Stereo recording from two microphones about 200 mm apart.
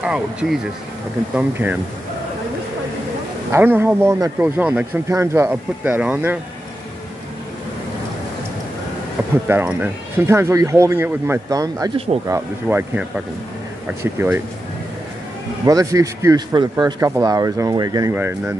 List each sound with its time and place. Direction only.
0.0 s a man's voice: 5° right (ahead or behind)
3.5 s a man's voice: 10° right (ahead or behind)
9.5 s a man's voice: 10° right (ahead or behind)
15.6 s a man's voice: 15° right (ahead or behind)